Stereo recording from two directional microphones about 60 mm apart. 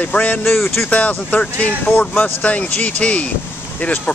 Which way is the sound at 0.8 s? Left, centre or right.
Left.